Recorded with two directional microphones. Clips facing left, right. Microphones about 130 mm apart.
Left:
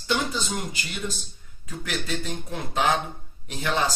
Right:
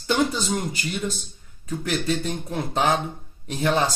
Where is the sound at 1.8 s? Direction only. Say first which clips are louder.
Right 6 dB; 30° right (ahead or behind).